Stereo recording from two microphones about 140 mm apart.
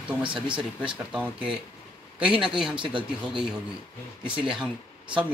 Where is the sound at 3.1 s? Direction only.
5° right (ahead or behind).